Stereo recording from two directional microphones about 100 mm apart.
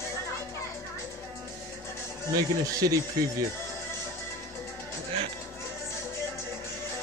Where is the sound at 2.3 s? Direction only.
35° right (ahead or behind).